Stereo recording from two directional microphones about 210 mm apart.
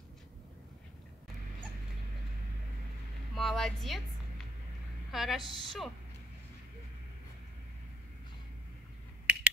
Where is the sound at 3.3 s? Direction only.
Centre (ahead or behind).